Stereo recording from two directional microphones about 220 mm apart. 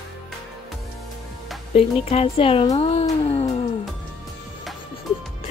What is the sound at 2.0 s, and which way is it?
Speech, 25° left (ahead or behind).